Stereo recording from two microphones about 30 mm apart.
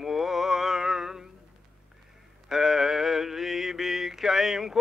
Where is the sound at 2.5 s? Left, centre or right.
Centre.